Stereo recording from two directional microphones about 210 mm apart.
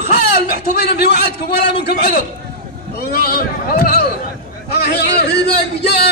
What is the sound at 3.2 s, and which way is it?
A man's voice, 45° left (ahead or behind).